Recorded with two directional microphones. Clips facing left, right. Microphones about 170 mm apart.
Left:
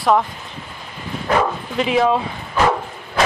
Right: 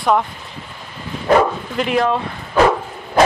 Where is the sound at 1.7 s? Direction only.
Centre (ahead or behind).